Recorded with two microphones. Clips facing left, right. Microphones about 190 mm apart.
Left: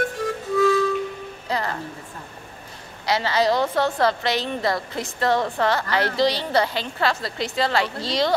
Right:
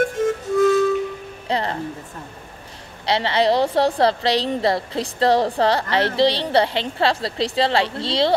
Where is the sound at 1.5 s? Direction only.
30° right (ahead or behind).